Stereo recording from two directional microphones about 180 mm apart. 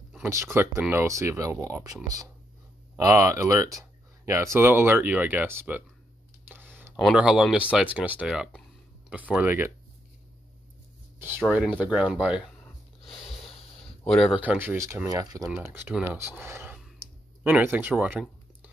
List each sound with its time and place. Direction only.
0.2 s speech: 15° right (ahead or behind)
3.0 s speech: 15° right (ahead or behind)
6.5 s computer keyboard: 10° right (ahead or behind)
7.0 s speech: centre (ahead or behind)
11.1 s speech: 10° right (ahead or behind)
14.0 s speech: centre (ahead or behind)
14.4 s speech: 10° right (ahead or behind)